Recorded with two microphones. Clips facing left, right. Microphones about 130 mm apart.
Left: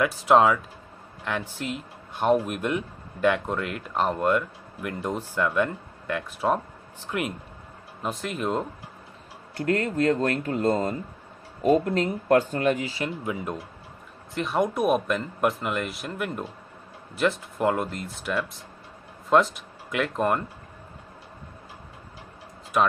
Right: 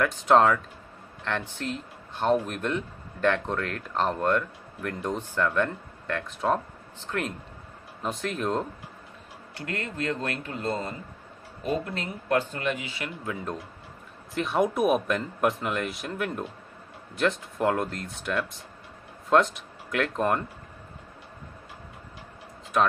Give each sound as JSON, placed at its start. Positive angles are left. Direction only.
{"t": 0.0, "sound": "speech", "side_deg": 5}
{"t": 9.6, "sound": "speech", "side_deg": 40}
{"t": 13.2, "sound": "speech", "side_deg": 15}
{"t": 14.3, "sound": "speech", "side_deg": 0}
{"t": 22.7, "sound": "speech", "side_deg": 5}